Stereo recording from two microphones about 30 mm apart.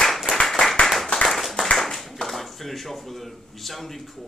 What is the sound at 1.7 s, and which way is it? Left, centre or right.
Speech, centre.